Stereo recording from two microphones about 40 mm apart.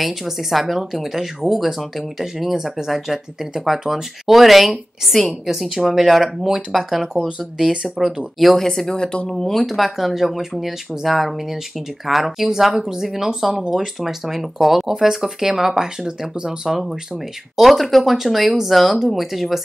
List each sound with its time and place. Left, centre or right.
0.0 s speech: centre
7.2 s speech: centre
8.0 s speech: centre
8.4 s speech: centre
8.9 s speech: left
9.3 s speech: centre